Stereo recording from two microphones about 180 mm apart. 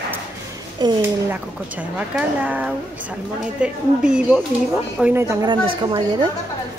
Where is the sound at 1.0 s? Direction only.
10° right (ahead or behind); by 6.3 s 25° right (ahead or behind).